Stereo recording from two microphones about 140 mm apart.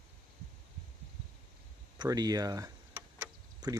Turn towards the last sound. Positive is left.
turn(degrees=-30)  # may be behind; listen again after turning